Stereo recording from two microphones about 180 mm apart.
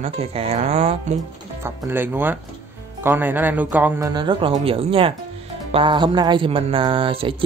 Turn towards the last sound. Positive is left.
turn(degrees=-30)  # may be behind; listen again after turning